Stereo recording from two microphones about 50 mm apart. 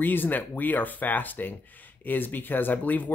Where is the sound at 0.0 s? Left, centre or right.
Left.